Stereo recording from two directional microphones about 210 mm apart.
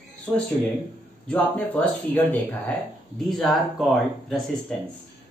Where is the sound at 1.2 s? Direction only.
5° left (ahead or behind).